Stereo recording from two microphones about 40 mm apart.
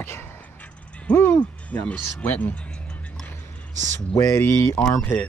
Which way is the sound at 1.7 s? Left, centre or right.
Left.